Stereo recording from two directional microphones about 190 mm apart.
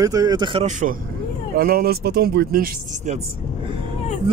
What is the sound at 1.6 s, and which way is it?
Speech, 50° right (ahead or behind).